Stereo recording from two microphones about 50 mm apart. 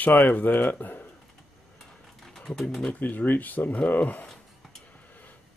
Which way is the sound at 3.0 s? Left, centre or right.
Left.